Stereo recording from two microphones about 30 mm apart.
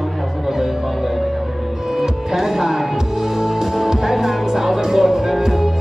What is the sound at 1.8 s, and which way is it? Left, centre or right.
Music, centre.